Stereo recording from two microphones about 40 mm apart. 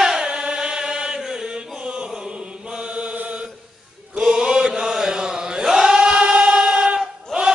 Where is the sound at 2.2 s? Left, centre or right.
Right.